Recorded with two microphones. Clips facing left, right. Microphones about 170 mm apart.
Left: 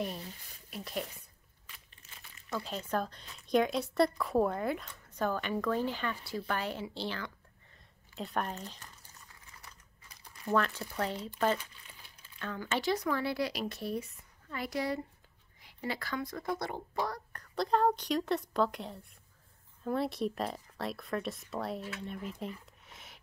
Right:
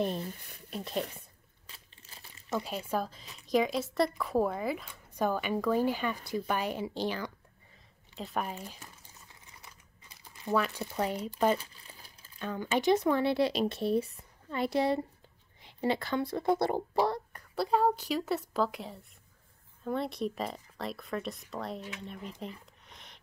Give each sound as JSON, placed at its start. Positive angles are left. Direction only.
{"t": 0.2, "sound": "speech", "side_deg": -55}
{"t": 0.7, "sound": "speech", "side_deg": -30}
{"t": 1.7, "sound": "crumpling", "side_deg": -35}
{"t": 2.6, "sound": "a woman's voice", "side_deg": -10}
{"t": 8.2, "sound": "a woman's voice", "side_deg": -5}
{"t": 9.3, "sound": "typing", "side_deg": -20}
{"t": 10.5, "sound": "a woman's voice", "side_deg": -5}
{"t": 11.5, "sound": "crumpling", "side_deg": -35}
{"t": 12.4, "sound": "speech", "side_deg": -15}
{"t": 17.3, "sound": "a woman's voice", "side_deg": -10}
{"t": 22.8, "sound": "a sound", "side_deg": 5}